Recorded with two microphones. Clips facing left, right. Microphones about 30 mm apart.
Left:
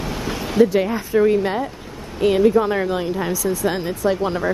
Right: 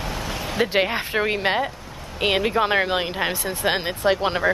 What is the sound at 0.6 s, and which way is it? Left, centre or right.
Speech, right.